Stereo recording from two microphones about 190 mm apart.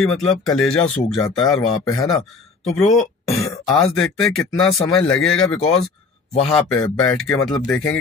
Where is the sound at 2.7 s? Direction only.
5° left (ahead or behind).